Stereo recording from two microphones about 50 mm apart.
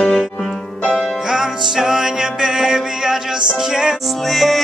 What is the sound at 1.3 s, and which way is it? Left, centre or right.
Music, centre.